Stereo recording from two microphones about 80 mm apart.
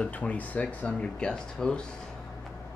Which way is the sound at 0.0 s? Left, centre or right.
Centre.